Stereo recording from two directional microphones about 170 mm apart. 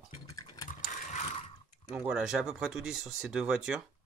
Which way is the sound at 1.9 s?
5° right (ahead or behind).